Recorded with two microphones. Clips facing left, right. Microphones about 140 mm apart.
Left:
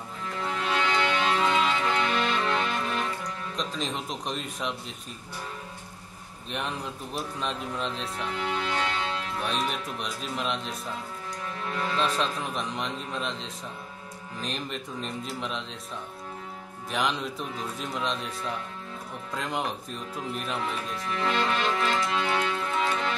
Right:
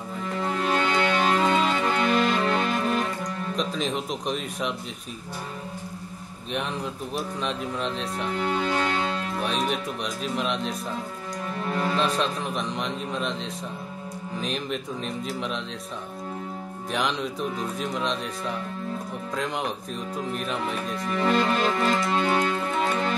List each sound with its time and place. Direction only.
0.4 s music: 45° right (ahead or behind)
3.5 s a man's voice: centre (ahead or behind)
7.2 s a man's voice: centre (ahead or behind)
8.4 s music: 45° right (ahead or behind)
9.4 s a man's voice: centre (ahead or behind)
12.0 s a man's voice: centre (ahead or behind)
16.9 s a man's voice: centre (ahead or behind)
21.1 s music: 40° right (ahead or behind)